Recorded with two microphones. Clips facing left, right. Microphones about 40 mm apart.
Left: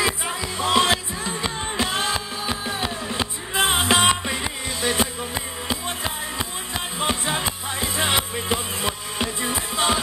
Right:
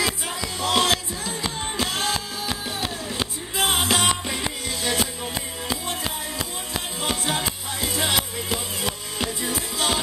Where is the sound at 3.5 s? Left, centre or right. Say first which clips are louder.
Left 3 dB; left.